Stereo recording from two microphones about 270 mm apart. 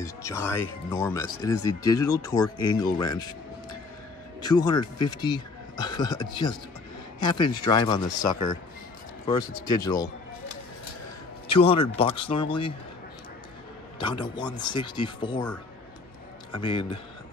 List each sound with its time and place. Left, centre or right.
0.0 s speech: centre
4.4 s speech: centre
11.4 s speech: centre
13.9 s speech: centre
16.5 s speech: centre